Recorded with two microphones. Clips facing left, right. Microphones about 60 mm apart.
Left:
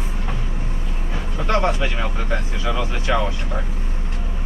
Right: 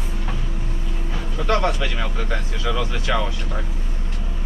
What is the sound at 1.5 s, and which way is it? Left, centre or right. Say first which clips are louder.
Speech: left 1 dB; centre.